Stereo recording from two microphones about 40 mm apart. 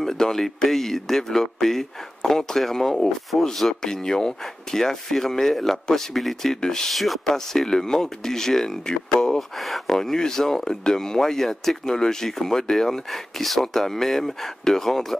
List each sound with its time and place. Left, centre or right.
0.0 s speech: centre
6.5 s speech: centre
6.9 s speech: centre
7.3 s speech: centre
9.6 s speech: centre
9.9 s speech: centre